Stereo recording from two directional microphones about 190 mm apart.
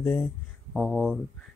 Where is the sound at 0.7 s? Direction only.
Centre (ahead or behind).